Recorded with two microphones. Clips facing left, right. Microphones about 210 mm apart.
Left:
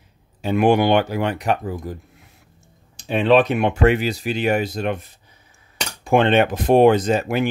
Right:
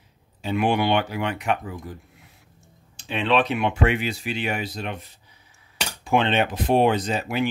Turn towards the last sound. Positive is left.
turn(degrees=50)  # may be behind; listen again after turning